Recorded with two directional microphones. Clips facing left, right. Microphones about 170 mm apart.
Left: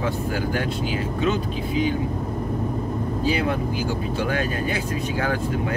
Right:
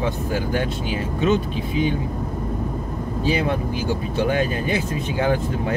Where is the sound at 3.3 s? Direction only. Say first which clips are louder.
Right 2 dB; 25° right (ahead or behind).